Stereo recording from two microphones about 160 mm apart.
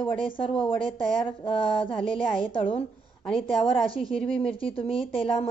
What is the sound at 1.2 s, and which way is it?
Speech, 30° left (ahead or behind).